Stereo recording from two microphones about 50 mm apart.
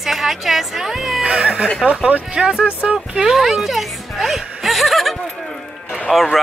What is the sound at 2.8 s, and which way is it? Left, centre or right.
Speech, right.